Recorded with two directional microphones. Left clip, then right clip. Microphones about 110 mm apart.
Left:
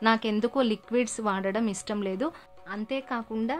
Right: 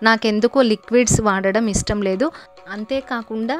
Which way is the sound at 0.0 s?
60° right (ahead or behind).